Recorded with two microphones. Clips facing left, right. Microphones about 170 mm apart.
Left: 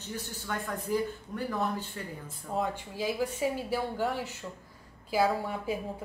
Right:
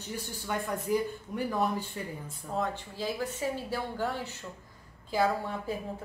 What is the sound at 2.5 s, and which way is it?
Speech, 10° left (ahead or behind).